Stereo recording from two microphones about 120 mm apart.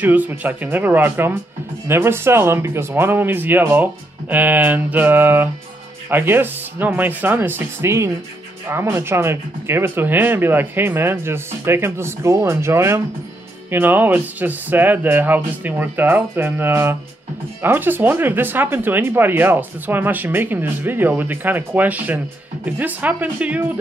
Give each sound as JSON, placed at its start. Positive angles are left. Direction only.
{"t": 0.0, "sound": "speech", "side_deg": -15}